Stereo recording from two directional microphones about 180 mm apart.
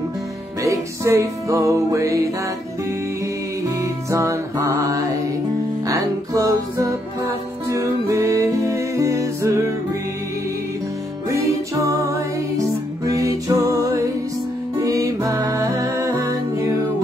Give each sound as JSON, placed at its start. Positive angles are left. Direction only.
{"t": 0.6, "sound": "music", "side_deg": -15}
{"t": 3.8, "sound": "music", "side_deg": -15}
{"t": 11.2, "sound": "music", "side_deg": -15}
{"t": 13.1, "sound": "music", "side_deg": -20}